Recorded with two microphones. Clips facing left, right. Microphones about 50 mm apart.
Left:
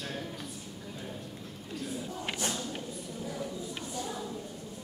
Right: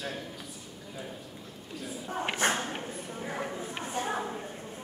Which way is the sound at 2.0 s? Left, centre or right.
Right.